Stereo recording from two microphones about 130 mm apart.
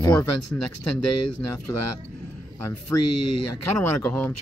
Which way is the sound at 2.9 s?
30° left (ahead or behind).